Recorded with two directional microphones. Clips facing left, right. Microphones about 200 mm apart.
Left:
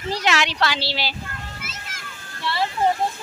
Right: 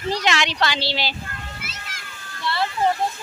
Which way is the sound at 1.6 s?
45° left (ahead or behind).